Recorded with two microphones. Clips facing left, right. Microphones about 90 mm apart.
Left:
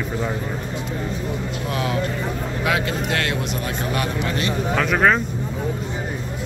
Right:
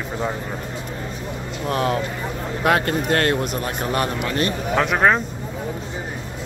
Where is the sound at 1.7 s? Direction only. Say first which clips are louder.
Right 3 dB; 40° right (ahead or behind).